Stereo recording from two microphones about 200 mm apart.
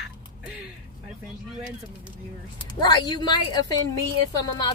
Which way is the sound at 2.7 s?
20° left (ahead or behind).